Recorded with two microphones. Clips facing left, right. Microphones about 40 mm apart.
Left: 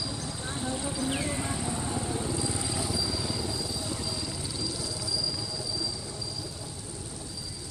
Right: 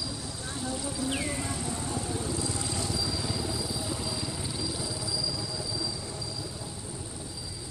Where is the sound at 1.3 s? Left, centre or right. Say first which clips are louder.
Left 1 dB; centre.